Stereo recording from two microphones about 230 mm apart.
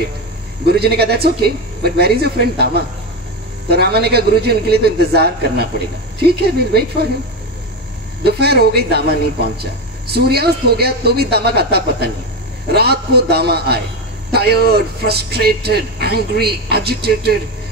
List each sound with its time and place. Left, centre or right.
0.7 s speech: right
8.2 s speech: right